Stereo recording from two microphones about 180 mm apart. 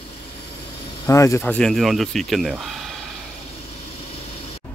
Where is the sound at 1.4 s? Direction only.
5° left (ahead or behind).